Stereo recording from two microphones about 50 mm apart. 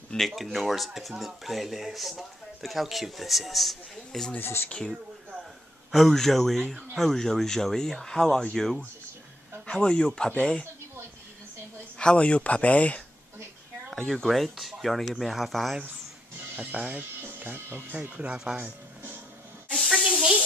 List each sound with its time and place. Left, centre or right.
0.1 s speech: centre
3.9 s a sound: centre
4.4 s speech: left
5.9 s speech: centre
9.7 s speech: centre
12.0 s speech: left
14.1 s speech: centre
16.8 s speech: right
17.4 s speech: right
18.1 s speech: right
19.7 s spray: centre